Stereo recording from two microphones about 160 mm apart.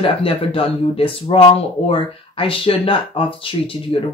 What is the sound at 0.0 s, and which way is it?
Speech, 35° left (ahead or behind).